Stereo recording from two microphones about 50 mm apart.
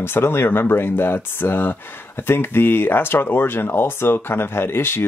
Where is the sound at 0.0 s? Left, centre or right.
Left.